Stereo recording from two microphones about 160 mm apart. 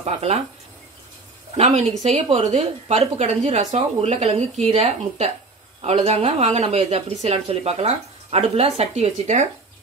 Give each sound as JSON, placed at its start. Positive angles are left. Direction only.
{"t": 0.0, "sound": "a woman's voice", "side_deg": -40}
{"t": 2.0, "sound": "a woman's voice", "side_deg": -40}